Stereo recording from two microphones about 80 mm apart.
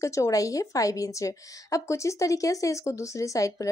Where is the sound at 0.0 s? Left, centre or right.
Left.